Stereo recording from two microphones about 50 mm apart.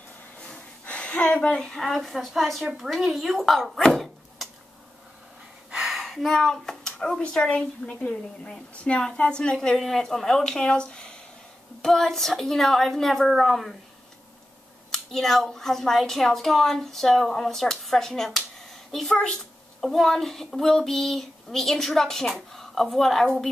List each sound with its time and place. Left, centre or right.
0.8 s speech: left
1.6 s speech: centre
5.9 s a woman's voice: centre
9.8 s speech: centre
11.8 s speech: centre
14.9 s speech: centre
19.1 s a woman's voice: left
19.8 s speech: centre